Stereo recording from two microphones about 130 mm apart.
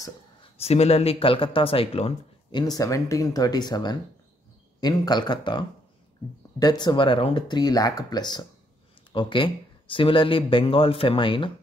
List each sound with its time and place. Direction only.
0.4 s speech: 50° left (ahead or behind)
2.5 s speech: 30° left (ahead or behind)